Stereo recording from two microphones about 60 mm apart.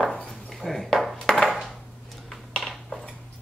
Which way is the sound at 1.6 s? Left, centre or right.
Centre.